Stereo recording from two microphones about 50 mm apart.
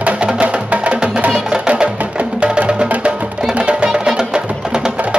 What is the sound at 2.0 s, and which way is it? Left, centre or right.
Music, right.